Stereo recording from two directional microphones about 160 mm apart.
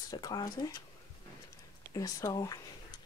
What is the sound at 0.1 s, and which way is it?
Speech, 25° left (ahead or behind).